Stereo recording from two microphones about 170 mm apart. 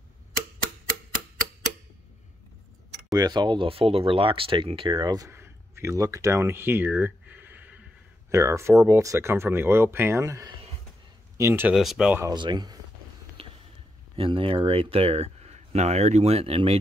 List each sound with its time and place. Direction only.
3.2 s speech: 25° right (ahead or behind)
11.7 s speech: centre (ahead or behind)
12.2 s speech: 25° right (ahead or behind)
13.4 s a sound: 35° right (ahead or behind)
14.1 s speech: 30° right (ahead or behind)